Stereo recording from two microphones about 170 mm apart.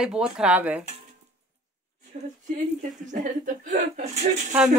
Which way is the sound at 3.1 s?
45° right (ahead or behind).